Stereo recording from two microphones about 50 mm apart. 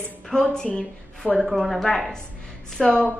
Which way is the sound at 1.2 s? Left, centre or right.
Centre.